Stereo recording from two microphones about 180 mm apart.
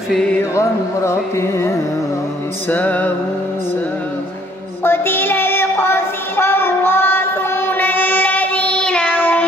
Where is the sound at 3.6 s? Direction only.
10° left (ahead or behind).